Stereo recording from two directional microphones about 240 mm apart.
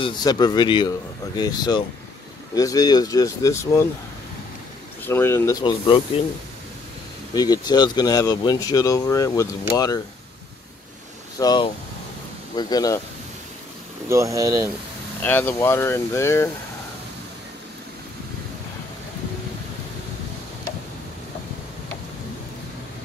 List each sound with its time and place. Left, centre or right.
0.0 s speech: centre
5.0 s speech: centre
7.3 s speech: centre
11.3 s speech: centre
14.0 s speech: centre
15.2 s speech: centre